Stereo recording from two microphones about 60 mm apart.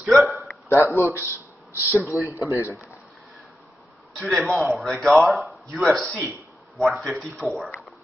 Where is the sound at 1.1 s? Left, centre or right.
Right.